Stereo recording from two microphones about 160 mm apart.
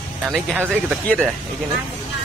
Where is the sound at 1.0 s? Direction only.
5° left (ahead or behind).